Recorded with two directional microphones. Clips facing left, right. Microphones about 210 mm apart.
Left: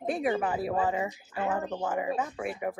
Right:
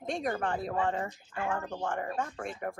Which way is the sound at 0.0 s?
5° left (ahead or behind).